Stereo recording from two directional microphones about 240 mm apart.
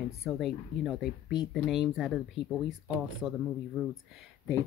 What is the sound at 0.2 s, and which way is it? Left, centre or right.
Speech, centre.